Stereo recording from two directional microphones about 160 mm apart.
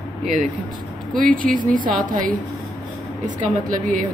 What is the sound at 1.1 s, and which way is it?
A woman's voice, 60° right (ahead or behind).